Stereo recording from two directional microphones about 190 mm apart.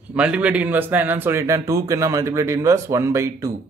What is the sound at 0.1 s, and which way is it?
A man's voice, 5° right (ahead or behind).